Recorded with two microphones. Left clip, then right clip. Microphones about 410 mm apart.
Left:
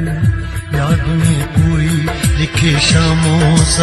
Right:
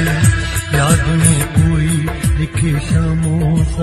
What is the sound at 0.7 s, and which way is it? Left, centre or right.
Music of bollywood, centre.